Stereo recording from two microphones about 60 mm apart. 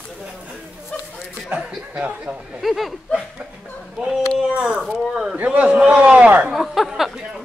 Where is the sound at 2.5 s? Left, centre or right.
Centre.